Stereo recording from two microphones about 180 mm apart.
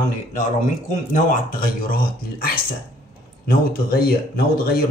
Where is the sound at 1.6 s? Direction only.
55° left (ahead or behind).